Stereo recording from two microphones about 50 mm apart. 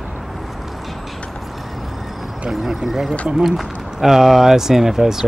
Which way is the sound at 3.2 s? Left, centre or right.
Centre.